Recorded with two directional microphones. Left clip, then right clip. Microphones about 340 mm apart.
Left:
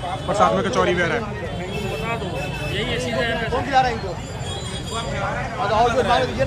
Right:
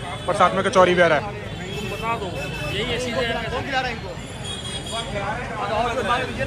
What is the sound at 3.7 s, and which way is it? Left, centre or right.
Speech, left.